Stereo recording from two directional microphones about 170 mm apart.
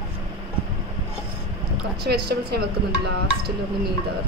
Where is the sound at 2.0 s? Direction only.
75° right (ahead or behind).